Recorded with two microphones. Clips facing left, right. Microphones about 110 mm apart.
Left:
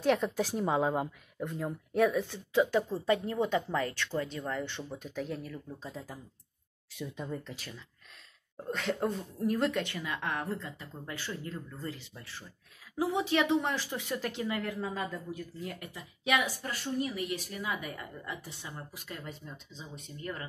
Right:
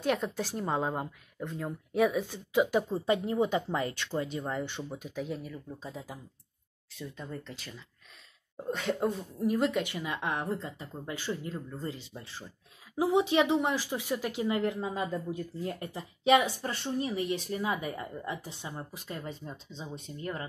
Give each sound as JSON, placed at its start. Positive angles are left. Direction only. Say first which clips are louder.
{"t": 0.0, "sound": "speech", "louder": "left 2 dB", "side_deg": 0}
{"t": 6.9, "sound": "speech", "louder": "left 2 dB", "side_deg": 10}
{"t": 15.1, "sound": "speech", "louder": "right 5 dB", "side_deg": -30}
{"t": 19.4, "sound": "speech", "louder": "right 4 dB", "side_deg": -35}